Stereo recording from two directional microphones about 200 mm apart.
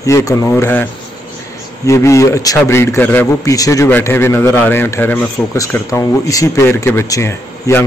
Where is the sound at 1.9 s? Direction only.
15° left (ahead or behind).